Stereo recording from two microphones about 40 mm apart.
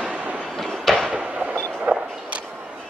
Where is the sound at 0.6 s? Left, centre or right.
Centre.